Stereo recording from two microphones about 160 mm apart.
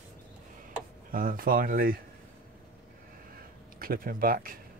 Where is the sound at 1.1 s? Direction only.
60° right (ahead or behind).